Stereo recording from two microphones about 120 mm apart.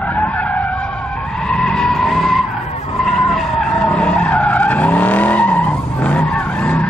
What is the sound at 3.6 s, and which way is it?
Vehicle, 5° left (ahead or behind).